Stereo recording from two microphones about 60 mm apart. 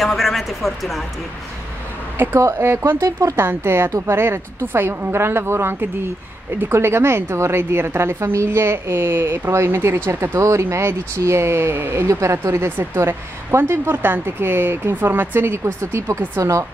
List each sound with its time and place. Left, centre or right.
0.0 s speech: centre
2.4 s a woman's voice: right
3.0 s speech: right
3.3 s a woman's voice: right
9.5 s a woman's voice: right
12.1 s speech: right